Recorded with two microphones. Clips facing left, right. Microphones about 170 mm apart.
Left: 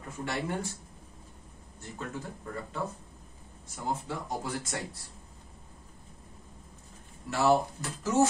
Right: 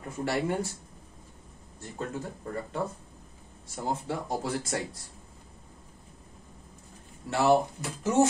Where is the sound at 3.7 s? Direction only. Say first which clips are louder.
Right 3 dB; 30° right (ahead or behind).